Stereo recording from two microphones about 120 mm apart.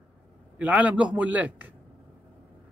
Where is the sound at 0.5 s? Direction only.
10° right (ahead or behind).